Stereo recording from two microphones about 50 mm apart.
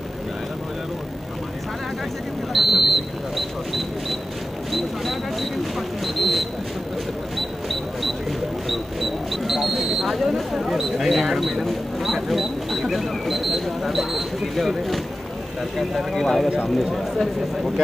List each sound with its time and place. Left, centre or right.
2.5 s a sound: centre
4.7 s mechanisms: centre
6.1 s a sound: centre
8.6 s single-lens reflex camera: centre
15.9 s speech: centre
16.4 s speech: centre
16.7 s speech: centre